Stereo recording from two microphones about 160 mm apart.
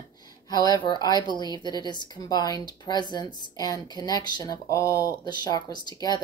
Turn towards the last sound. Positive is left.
turn(degrees=25)  # may be behind; listen again after turning